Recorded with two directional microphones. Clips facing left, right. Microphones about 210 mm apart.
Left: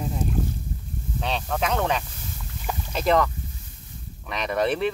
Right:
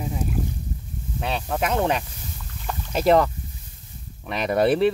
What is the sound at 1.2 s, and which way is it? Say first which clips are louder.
Speech: right 1 dB; 5° right (ahead or behind).